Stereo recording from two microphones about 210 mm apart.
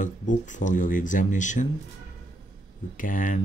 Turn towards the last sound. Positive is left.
turn(degrees=40)  # may be behind; listen again after turning